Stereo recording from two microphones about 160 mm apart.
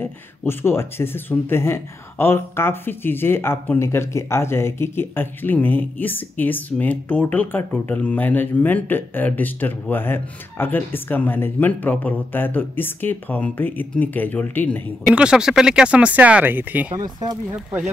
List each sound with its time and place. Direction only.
0.0 s speech: 10° left (ahead or behind)
15.0 s speech: 5° right (ahead or behind)
16.9 s speech: 25° right (ahead or behind)